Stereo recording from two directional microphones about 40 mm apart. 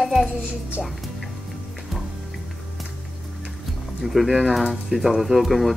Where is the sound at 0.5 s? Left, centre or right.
Right.